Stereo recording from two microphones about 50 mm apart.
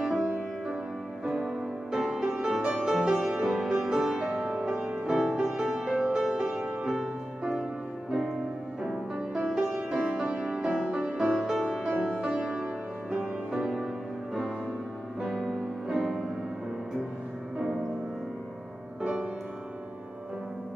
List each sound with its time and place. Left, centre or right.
0.0 s music: centre
8.8 s music: centre
9.5 s music: centre
15.9 s music: centre